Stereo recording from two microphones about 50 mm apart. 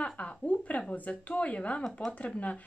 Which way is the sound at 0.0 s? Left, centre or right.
Left.